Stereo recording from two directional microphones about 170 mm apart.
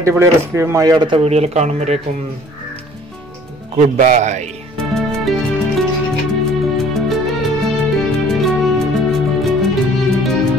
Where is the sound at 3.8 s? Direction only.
45° right (ahead or behind).